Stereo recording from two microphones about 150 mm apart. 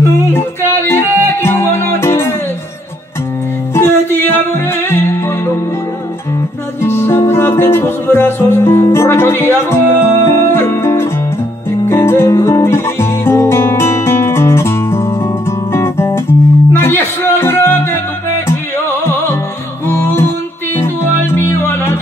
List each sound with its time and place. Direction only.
0.3 s music: 15° left (ahead or behind)
3.7 s music: 15° left (ahead or behind)
6.8 s music: 15° left (ahead or behind)
19.9 s music: 15° left (ahead or behind)